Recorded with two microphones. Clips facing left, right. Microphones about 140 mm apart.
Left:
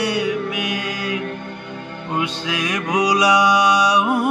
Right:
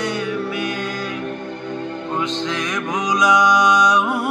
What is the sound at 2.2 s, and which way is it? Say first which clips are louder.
Mantra: left 1 dB; 10° left (ahead or behind).